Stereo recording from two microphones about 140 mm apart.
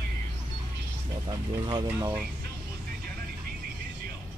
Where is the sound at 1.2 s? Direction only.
30° right (ahead or behind).